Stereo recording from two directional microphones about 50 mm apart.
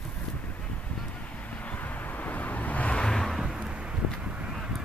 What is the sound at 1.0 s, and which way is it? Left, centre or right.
Vehicle, left.